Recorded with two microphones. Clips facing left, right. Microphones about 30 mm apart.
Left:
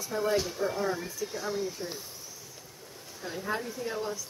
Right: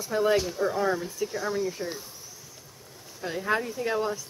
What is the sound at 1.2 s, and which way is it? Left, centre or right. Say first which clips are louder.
Speech: right 4 dB; right.